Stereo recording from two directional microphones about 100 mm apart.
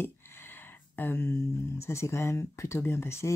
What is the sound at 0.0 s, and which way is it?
Speech, 20° left (ahead or behind).